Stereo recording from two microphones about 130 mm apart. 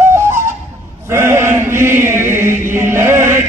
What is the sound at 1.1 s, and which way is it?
Chant, 20° right (ahead or behind).